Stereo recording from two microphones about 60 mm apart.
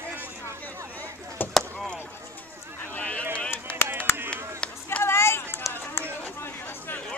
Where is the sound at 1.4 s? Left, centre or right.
Left.